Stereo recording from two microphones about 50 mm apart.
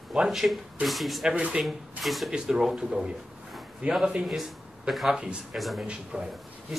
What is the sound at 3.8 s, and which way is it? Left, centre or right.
Speech, right.